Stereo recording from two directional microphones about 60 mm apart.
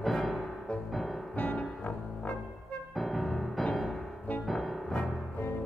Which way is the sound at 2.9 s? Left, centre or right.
Centre.